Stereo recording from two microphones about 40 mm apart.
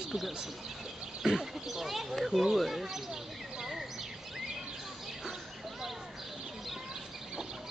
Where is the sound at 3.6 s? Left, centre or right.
Centre.